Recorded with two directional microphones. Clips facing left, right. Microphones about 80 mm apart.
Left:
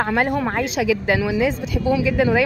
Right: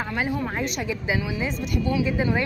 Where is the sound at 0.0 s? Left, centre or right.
Left.